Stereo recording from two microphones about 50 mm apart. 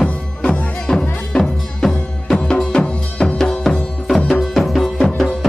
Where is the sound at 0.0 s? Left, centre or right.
Left.